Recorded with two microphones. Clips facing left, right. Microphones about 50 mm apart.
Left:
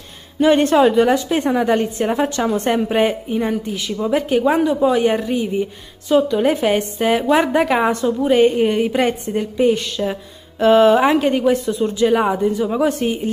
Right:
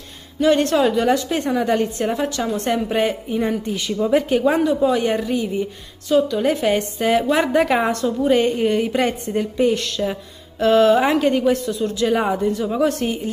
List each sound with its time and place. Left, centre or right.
0.4 s a woman's voice: centre
2.1 s a woman's voice: left
12.2 s a woman's voice: centre